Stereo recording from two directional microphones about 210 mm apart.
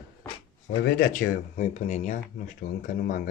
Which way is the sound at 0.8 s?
45° left (ahead or behind).